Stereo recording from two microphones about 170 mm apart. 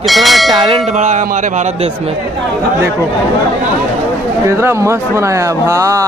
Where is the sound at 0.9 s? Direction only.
45° right (ahead or behind).